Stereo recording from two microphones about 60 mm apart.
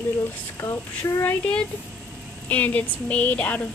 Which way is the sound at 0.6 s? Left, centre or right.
Left.